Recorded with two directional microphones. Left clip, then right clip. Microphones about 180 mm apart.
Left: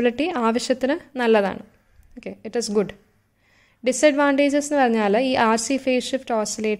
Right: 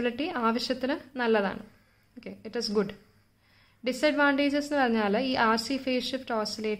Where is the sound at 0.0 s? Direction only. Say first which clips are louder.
Left 7 dB; 40° left (ahead or behind).